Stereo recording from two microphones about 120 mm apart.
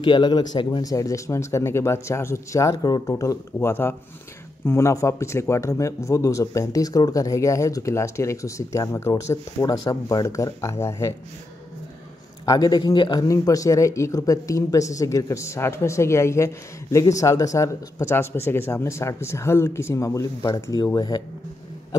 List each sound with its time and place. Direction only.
0.0 s a man's voice: 40° left (ahead or behind)
12.4 s a man's voice: 35° left (ahead or behind)